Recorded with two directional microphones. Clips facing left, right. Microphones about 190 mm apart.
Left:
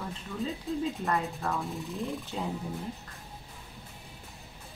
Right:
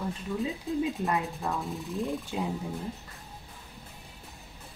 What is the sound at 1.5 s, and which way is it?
Music, centre (ahead or behind).